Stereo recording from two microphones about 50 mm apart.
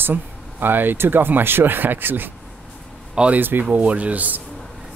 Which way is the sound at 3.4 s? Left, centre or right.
Right.